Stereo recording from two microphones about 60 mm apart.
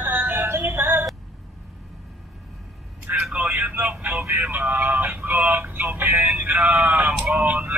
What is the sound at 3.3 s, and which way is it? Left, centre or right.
Speech, right.